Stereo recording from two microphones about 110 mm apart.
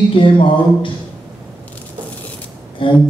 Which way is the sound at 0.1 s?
50° left (ahead or behind).